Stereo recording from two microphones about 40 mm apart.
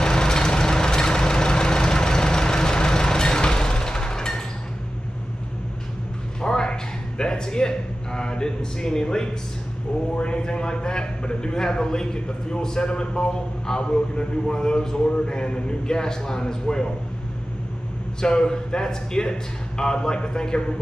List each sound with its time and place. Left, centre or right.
0.0 s vehicle: centre
6.4 s a sound: centre
10.1 s a man's voice: left
18.2 s a man's voice: left